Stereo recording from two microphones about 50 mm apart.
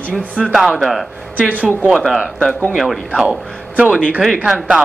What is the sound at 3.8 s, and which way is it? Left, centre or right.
Speech, centre.